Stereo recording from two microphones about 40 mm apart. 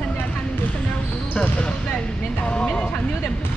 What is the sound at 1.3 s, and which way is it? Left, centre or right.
Basketball bounce, left.